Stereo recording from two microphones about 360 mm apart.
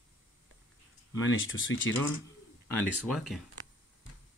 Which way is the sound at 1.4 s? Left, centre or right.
Left.